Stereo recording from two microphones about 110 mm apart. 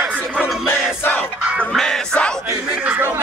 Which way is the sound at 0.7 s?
15° left (ahead or behind).